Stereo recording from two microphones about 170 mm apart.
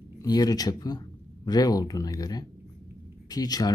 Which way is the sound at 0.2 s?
20° left (ahead or behind).